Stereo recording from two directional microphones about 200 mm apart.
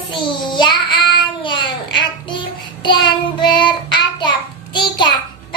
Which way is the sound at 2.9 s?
25° left (ahead or behind).